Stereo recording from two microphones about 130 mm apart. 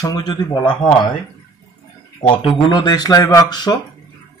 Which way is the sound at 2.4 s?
40° left (ahead or behind).